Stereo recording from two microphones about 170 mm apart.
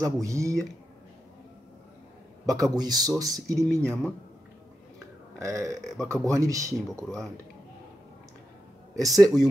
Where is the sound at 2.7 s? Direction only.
25° right (ahead or behind).